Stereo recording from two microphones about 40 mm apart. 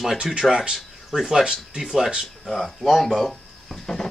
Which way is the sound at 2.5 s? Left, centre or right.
Centre.